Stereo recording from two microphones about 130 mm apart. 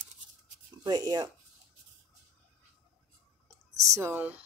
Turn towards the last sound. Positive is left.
turn(degrees=-10)  # may be behind; listen again after turning